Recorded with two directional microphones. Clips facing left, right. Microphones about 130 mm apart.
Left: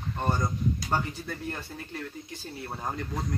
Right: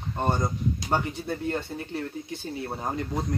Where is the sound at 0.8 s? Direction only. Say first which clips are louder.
Right 3 dB; 25° right (ahead or behind).